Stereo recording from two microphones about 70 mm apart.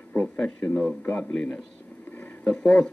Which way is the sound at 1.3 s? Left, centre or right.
Centre.